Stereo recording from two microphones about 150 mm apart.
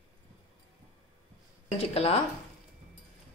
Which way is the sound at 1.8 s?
40° left (ahead or behind).